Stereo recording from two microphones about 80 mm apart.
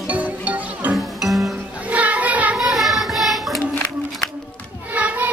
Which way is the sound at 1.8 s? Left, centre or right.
Centre.